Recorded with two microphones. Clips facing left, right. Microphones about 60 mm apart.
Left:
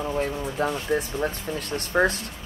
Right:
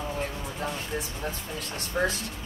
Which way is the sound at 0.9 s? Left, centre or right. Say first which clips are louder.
Left 8 dB; left.